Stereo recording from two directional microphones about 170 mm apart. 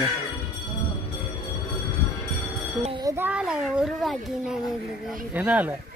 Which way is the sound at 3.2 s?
5° right (ahead or behind).